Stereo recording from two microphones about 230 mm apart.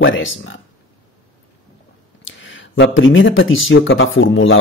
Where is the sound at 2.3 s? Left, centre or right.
Left.